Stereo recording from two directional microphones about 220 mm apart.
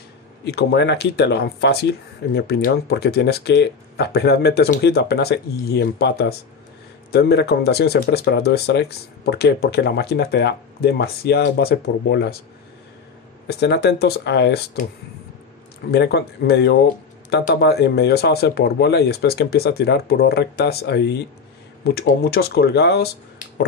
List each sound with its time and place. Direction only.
0.5 s speech: 50° left (ahead or behind)
13.5 s speech: 50° left (ahead or behind)
15.9 s speech: 50° left (ahead or behind)